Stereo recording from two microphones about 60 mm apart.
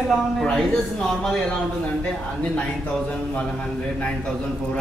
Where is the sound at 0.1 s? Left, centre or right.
Centre.